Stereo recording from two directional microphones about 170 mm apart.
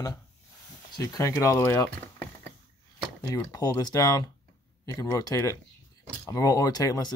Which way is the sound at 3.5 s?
25° left (ahead or behind).